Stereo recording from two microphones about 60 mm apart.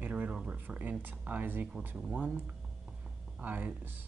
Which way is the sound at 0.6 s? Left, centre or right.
Right.